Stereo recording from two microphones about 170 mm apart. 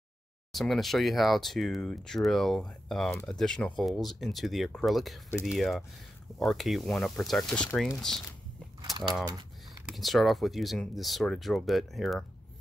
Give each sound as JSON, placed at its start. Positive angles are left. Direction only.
{"t": 0.5, "sound": "speech", "side_deg": 0}
{"t": 9.8, "sound": "speech", "side_deg": 0}